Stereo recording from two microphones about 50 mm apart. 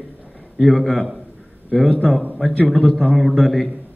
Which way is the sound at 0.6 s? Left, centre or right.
Centre.